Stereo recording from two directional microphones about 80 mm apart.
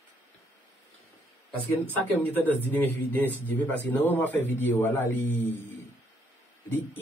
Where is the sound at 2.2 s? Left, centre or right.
Left.